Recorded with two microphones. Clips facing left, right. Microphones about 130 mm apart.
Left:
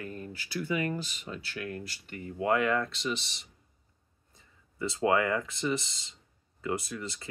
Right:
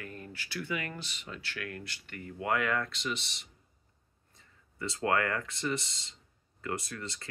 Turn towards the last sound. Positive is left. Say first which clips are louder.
# left 3 dB
turn(degrees=15)  # may be behind; listen again after turning